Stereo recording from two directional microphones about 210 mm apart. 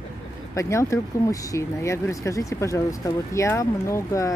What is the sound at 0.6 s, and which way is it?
Speech, 15° left (ahead or behind).